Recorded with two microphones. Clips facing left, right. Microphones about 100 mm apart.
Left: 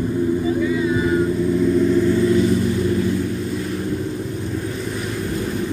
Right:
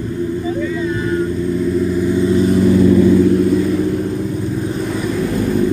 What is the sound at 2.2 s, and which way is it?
Vehicle, 25° right (ahead or behind).